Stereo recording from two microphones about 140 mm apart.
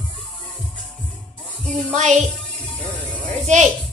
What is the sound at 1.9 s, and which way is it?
Speech, 55° right (ahead or behind).